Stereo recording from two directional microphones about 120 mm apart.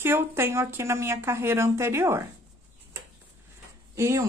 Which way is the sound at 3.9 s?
25° right (ahead or behind).